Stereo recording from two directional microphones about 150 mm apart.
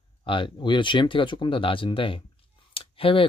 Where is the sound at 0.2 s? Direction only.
30° left (ahead or behind).